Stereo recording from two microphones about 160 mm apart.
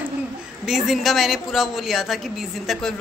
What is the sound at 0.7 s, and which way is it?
A woman's voice, centre (ahead or behind).